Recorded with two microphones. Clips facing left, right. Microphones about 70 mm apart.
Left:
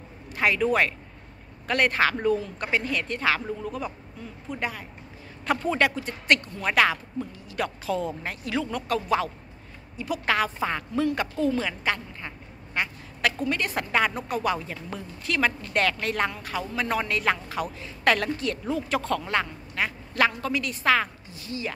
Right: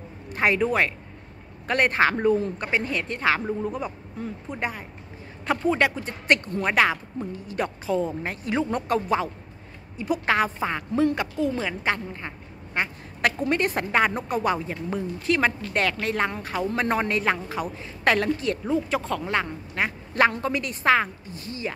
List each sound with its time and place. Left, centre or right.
0.3 s a man's voice: right